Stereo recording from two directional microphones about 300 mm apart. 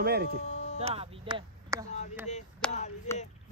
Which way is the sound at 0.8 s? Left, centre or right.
Centre.